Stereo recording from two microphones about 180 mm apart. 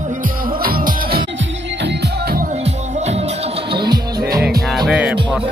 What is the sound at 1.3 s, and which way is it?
Music, 85° right.